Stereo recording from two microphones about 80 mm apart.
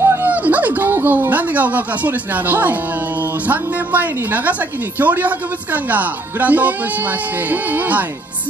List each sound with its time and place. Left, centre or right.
0.0 s a woman's voice: right